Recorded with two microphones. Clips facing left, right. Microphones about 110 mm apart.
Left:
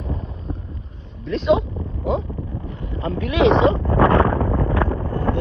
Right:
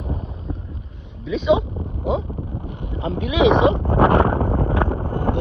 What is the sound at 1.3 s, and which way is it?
Speech, centre (ahead or behind).